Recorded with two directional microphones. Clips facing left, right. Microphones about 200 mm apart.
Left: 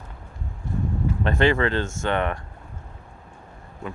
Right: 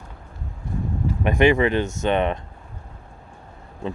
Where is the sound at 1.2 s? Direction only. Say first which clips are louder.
Right 4 dB; 15° right (ahead or behind).